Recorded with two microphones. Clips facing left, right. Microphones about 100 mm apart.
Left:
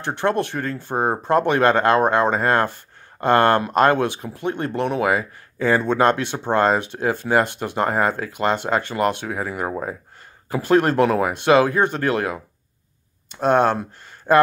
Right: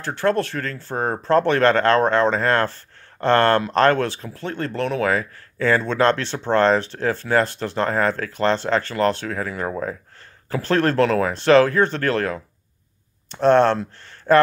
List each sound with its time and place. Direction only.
0.0 s speech: 20° left (ahead or behind)